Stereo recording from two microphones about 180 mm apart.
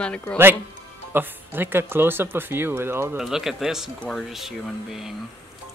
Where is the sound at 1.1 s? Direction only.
10° right (ahead or behind).